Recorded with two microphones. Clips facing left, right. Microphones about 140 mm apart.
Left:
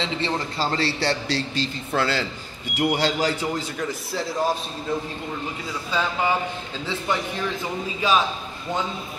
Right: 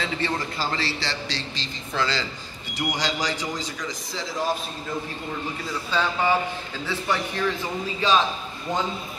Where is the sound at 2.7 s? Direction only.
10° left (ahead or behind).